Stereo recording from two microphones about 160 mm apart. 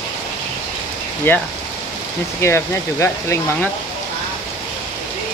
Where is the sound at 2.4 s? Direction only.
15° left (ahead or behind).